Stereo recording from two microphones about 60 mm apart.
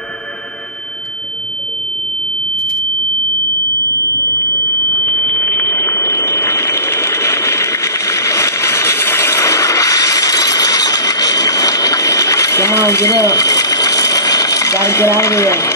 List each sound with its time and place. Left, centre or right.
4.9 s vehicle: left